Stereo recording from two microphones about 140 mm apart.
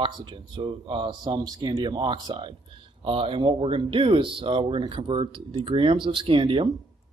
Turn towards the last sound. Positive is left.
turn(degrees=-40)  # may be behind; listen again after turning